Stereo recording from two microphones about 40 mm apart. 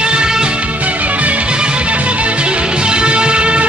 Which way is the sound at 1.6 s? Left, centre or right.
Right.